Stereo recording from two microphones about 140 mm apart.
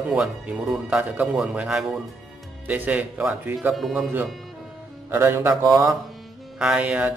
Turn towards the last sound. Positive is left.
turn(degrees=-10)  # may be behind; listen again after turning